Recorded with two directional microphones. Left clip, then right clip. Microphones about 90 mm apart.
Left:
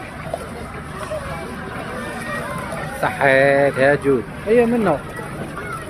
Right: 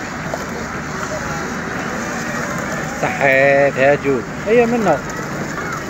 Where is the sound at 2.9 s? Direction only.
30° left (ahead or behind).